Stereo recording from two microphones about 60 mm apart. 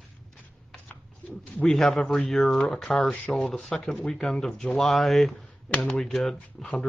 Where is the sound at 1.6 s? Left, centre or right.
Centre.